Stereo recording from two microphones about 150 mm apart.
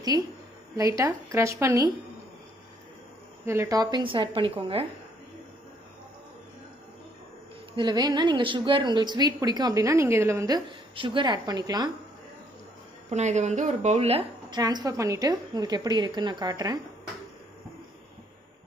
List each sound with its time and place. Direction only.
0.7 s a woman's voice: 20° right (ahead or behind)
3.4 s a woman's voice: 20° right (ahead or behind); by 4.8 s 35° right (ahead or behind)
7.7 s a woman's voice: 30° right (ahead or behind)
11.0 s a woman's voice: 30° right (ahead or behind)
13.1 s speech: 50° right (ahead or behind)
14.5 s a woman's voice: 25° right (ahead or behind)